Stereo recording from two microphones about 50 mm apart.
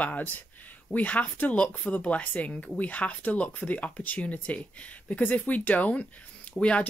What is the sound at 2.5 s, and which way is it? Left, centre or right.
Speech, centre.